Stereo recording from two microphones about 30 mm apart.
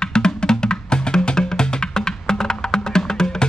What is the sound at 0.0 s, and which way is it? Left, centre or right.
Music, left.